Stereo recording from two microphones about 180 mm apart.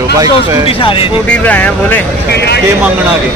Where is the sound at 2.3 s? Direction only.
65° left (ahead or behind).